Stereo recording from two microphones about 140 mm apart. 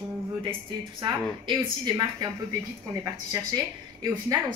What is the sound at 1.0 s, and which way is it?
Speech, 30° right (ahead or behind).